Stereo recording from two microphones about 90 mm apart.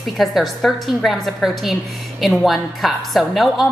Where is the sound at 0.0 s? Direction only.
Centre (ahead or behind).